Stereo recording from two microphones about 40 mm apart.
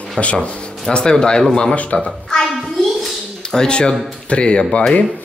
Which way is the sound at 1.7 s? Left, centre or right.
Left.